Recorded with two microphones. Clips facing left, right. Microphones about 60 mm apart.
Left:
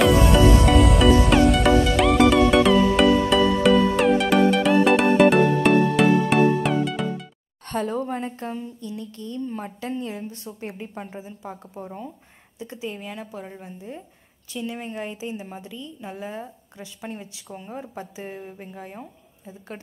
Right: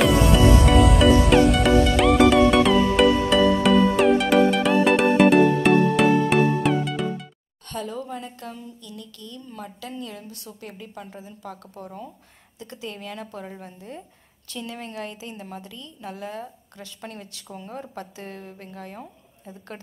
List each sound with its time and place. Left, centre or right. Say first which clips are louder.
0.0 s music: left 1 dB; centre
7.6 s a woman's voice: left 6 dB; left
11.1 s a woman's voice: left 2 dB; centre